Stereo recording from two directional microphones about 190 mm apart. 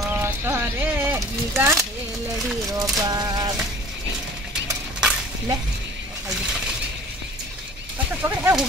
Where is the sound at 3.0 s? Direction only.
20° right (ahead or behind).